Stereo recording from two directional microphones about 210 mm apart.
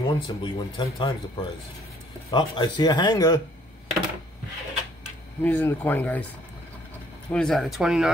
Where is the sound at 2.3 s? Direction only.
20° left (ahead or behind).